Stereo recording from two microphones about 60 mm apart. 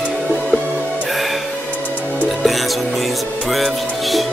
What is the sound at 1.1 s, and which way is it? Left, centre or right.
Music, centre.